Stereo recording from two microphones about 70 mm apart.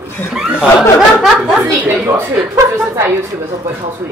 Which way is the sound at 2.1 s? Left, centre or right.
Right.